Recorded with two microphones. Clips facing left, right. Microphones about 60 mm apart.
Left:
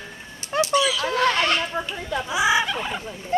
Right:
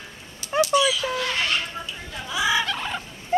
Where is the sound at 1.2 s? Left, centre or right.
Left.